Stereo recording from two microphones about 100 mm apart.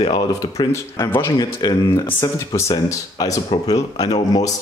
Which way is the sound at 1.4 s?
40° left (ahead or behind).